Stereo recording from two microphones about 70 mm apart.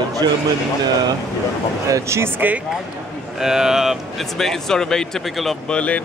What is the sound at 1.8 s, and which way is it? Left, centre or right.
Speech, right.